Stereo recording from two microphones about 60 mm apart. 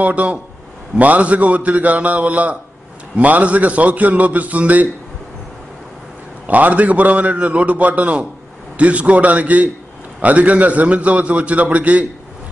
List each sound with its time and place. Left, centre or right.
0.0 s a man's voice: right
6.4 s a man's voice: right